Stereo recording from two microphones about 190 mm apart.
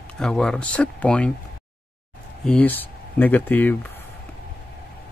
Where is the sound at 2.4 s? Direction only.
5° left (ahead or behind).